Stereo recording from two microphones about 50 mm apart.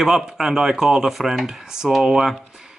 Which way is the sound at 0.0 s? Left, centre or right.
Centre.